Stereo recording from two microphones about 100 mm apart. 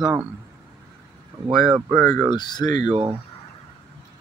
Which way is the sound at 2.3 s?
45° left (ahead or behind).